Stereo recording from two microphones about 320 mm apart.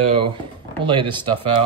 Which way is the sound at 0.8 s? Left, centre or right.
Centre.